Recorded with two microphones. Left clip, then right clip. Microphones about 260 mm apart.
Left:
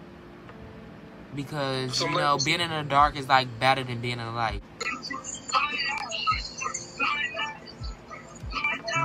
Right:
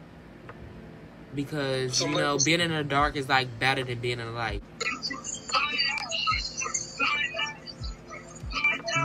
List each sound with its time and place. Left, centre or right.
1.3 s speech: centre
1.9 s speech: centre
2.2 s speech: centre
4.7 s music: centre